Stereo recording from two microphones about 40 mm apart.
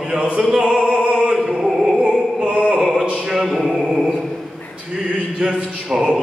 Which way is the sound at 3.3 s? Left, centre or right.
Centre.